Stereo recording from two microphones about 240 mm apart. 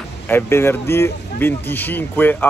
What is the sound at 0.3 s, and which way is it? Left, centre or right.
Speech, centre.